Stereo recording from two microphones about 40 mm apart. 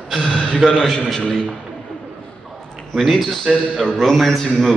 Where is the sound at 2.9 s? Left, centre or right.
Centre.